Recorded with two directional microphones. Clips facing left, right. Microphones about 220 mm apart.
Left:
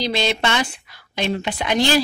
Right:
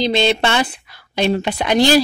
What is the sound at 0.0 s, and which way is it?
A woman's voice, 25° right (ahead or behind).